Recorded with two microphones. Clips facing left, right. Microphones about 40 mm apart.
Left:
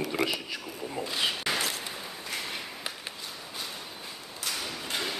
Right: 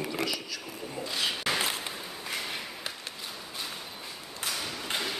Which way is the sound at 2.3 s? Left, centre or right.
Centre.